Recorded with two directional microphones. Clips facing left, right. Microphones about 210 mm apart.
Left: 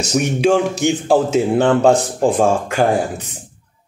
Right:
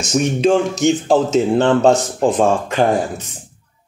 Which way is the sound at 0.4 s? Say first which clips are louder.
Even; 10° left (ahead or behind).